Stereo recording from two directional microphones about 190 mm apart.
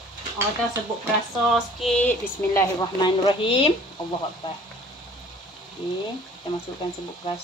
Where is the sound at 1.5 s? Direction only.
Centre (ahead or behind).